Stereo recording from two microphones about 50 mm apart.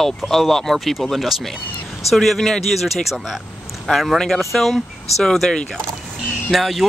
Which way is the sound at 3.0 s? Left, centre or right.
Centre.